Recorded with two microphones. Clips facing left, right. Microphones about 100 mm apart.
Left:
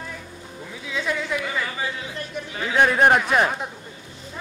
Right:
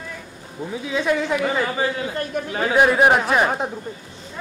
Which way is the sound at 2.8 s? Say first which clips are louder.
Right 1 dB; 10° right (ahead or behind).